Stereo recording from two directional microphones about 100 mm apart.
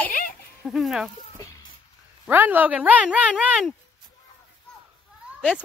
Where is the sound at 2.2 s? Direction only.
20° right (ahead or behind).